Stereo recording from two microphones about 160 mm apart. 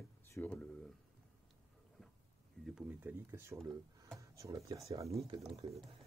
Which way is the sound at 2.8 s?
10° right (ahead or behind).